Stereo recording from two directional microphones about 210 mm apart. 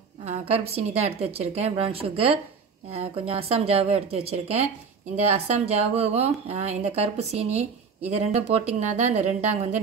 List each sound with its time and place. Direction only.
0.2 s a woman's voice: 30° right (ahead or behind)